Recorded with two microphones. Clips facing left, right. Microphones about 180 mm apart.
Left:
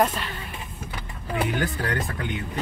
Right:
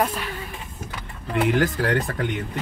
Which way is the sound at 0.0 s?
10° right (ahead or behind).